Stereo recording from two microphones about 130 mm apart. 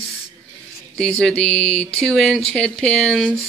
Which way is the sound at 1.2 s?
10° left (ahead or behind).